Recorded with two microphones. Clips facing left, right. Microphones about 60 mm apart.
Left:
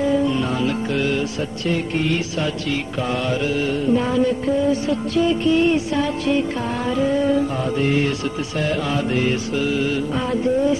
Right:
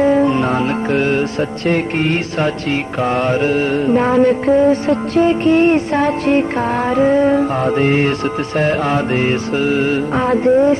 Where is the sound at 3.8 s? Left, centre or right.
Right.